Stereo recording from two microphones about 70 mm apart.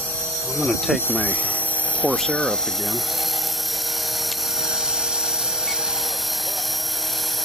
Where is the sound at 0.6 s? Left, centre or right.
Centre.